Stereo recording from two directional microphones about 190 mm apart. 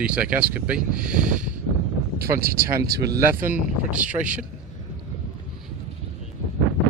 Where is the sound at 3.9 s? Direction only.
5° right (ahead or behind).